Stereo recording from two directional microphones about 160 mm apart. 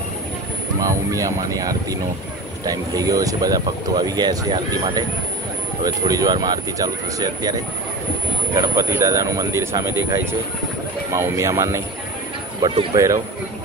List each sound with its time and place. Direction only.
0.7 s speech: 20° right (ahead or behind)
5.8 s speech: 25° right (ahead or behind)
12.9 s speech: 20° right (ahead or behind)